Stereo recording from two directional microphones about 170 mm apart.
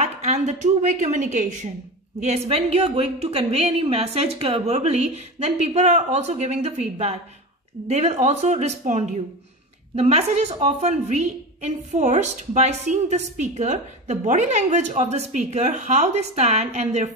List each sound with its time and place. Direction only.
0.0 s a woman's voice: 40° right (ahead or behind)